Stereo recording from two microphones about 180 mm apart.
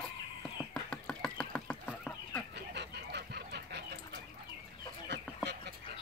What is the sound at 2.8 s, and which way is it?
Fowl, 70° right (ahead or behind).